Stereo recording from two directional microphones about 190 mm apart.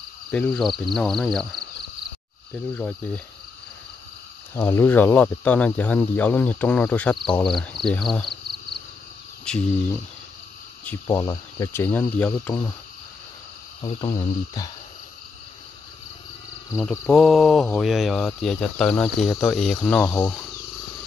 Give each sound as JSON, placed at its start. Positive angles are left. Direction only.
{"t": 0.3, "sound": "speech", "side_deg": 5}
{"t": 4.6, "sound": "speech", "side_deg": 15}
{"t": 9.4, "sound": "speech", "side_deg": 5}
{"t": 13.8, "sound": "speech", "side_deg": 30}
{"t": 17.0, "sound": "speech", "side_deg": 0}